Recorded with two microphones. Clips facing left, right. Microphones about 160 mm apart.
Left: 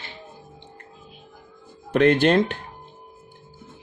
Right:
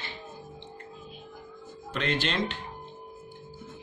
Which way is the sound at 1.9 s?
55° left (ahead or behind).